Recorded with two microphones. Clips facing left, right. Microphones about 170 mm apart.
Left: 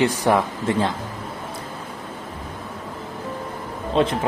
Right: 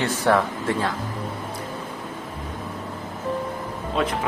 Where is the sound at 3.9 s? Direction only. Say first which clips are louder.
Left 5 dB; 25° left (ahead or behind).